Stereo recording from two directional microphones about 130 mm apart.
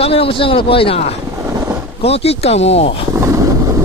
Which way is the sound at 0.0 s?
45° left (ahead or behind).